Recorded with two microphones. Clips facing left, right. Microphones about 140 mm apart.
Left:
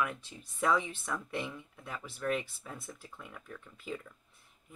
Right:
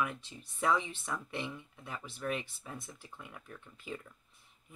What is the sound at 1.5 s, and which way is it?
Speech, 10° right (ahead or behind).